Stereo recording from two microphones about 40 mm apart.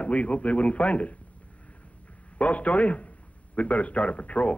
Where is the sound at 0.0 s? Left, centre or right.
Left.